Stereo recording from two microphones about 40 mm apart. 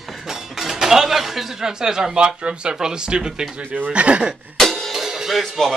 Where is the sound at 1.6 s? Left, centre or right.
Centre.